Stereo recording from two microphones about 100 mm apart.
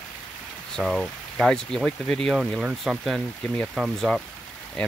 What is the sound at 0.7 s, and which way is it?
Speech, 5° left (ahead or behind).